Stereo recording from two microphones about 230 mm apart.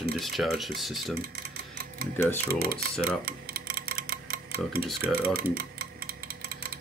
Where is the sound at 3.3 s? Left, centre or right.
Right.